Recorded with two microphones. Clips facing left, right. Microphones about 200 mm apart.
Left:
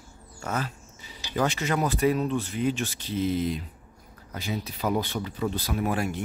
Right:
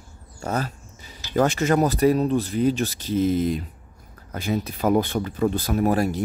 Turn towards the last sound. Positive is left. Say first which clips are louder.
# right 6 dB
turn(degrees=-40)  # may be behind; listen again after turning